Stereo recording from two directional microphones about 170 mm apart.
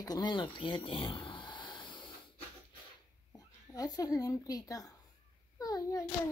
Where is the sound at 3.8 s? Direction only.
20° left (ahead or behind).